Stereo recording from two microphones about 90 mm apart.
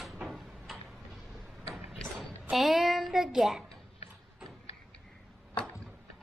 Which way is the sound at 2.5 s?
5° right (ahead or behind).